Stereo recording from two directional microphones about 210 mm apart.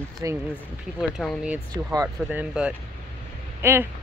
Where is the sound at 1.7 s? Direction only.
15° right (ahead or behind).